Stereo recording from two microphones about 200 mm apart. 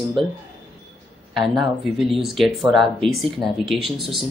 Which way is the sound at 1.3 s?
Centre (ahead or behind).